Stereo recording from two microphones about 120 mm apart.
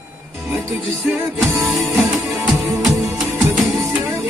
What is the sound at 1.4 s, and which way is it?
Music, centre (ahead or behind).